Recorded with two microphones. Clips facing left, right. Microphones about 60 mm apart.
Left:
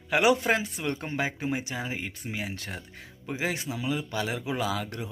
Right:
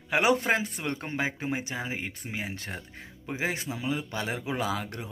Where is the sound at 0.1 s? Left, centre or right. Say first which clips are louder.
Left 1 dB; right.